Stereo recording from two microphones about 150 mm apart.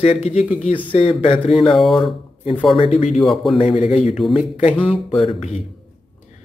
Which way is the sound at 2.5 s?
Centre (ahead or behind).